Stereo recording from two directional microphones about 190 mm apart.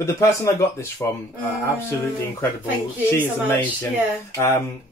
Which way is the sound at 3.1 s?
10° left (ahead or behind).